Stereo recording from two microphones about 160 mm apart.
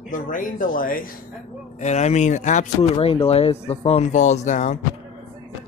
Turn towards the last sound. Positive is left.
turn(degrees=50)  # may be behind; listen again after turning